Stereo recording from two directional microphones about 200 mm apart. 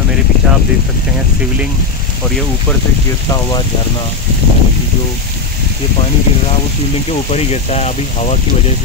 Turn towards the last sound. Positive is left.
turn(degrees=35)  # may be behind; listen again after turning